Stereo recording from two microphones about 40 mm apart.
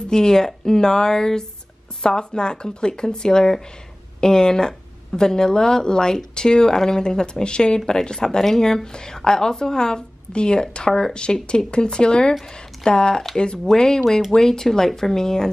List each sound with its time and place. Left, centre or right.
0.1 s speech: centre